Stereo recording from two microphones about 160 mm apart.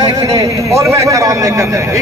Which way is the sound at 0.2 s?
20° right (ahead or behind).